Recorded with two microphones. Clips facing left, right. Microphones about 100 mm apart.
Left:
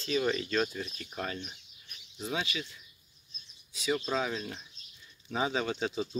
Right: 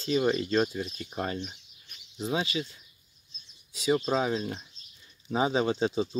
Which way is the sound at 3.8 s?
30° right (ahead or behind).